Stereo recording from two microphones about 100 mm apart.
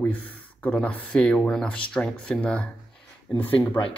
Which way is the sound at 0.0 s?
15° left (ahead or behind).